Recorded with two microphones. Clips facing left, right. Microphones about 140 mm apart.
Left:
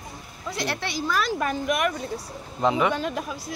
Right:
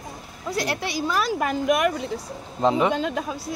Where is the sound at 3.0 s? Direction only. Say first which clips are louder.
Right 3 dB; 90° right.